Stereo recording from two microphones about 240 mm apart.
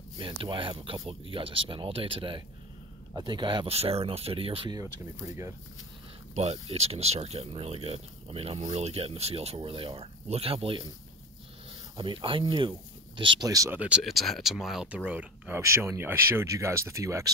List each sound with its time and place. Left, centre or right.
0.2 s speech: right
6.3 s speech: right
12.0 s speech: right